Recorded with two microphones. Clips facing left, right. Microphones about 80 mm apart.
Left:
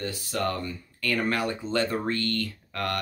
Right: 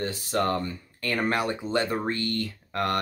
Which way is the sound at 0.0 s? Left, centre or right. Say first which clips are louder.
Right 3 dB; right.